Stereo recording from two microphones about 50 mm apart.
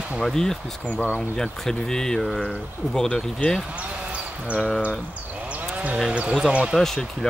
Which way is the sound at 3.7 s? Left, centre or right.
Right.